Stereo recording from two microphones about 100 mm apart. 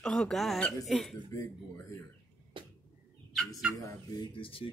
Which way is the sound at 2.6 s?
55° right (ahead or behind).